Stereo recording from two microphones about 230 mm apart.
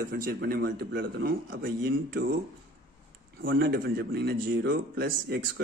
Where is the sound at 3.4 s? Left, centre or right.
Right.